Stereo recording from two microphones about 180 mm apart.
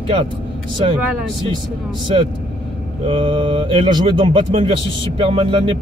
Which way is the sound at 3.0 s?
30° right (ahead or behind).